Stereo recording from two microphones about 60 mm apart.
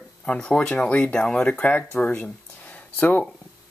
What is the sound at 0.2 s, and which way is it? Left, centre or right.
Speech, centre.